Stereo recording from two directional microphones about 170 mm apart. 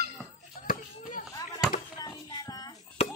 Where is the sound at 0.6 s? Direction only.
55° left (ahead or behind).